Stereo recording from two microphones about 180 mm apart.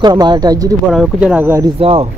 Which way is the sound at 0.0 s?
25° right (ahead or behind).